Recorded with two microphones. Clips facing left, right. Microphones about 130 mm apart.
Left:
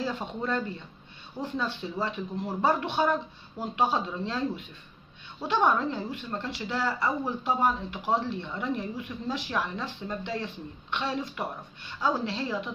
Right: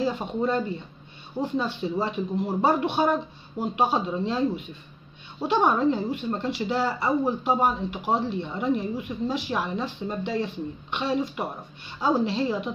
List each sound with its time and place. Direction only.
0.0 s speech: 15° right (ahead or behind)
5.5 s speech: 15° right (ahead or behind)